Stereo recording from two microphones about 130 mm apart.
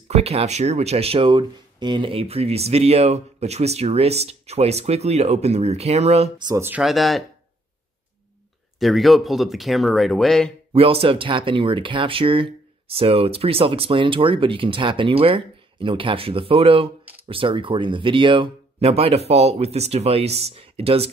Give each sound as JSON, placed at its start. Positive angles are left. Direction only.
{"t": 0.1, "sound": "speech", "side_deg": -55}
{"t": 6.5, "sound": "speech", "side_deg": -15}
{"t": 6.8, "sound": "speech", "side_deg": 0}
{"t": 8.7, "sound": "speech", "side_deg": 0}
{"t": 10.7, "sound": "speech", "side_deg": -45}